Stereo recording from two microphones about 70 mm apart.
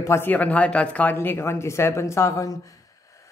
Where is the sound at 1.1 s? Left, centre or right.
Left.